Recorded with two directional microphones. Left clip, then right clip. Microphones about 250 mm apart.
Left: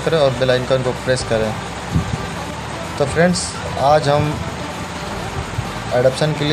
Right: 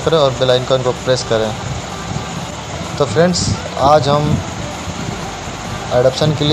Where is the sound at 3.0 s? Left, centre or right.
Centre.